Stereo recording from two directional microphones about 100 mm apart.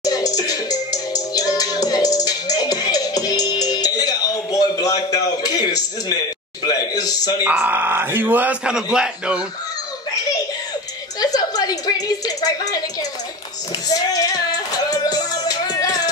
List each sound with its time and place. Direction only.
0.0 s music: 40° left (ahead or behind)
6.6 s a man's voice: 40° left (ahead or behind)
7.4 s speech: 20° right (ahead or behind)
11.1 s a sound: 40° left (ahead or behind)
13.8 s music: 40° left (ahead or behind)